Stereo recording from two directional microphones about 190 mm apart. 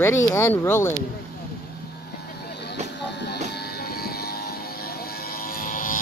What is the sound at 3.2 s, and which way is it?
Vehicle, 60° left (ahead or behind).